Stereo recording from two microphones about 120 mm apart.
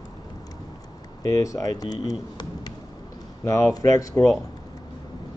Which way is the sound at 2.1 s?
30° left (ahead or behind).